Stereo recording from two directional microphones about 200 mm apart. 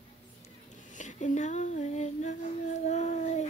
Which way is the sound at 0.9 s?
35° left (ahead or behind).